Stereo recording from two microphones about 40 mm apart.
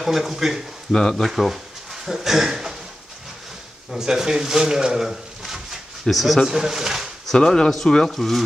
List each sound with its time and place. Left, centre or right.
0.0 s speech: centre
0.9 s speech: centre
1.2 s speech: centre
3.9 s speech: centre
5.1 s a sound: centre
6.4 s speech: centre
7.3 s speech: centre